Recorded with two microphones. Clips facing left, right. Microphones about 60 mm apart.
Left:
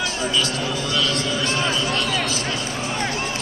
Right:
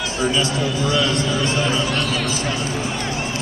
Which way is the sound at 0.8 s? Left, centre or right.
Right.